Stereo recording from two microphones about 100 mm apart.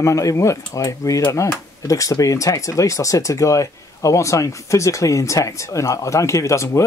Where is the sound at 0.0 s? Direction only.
35° left (ahead or behind).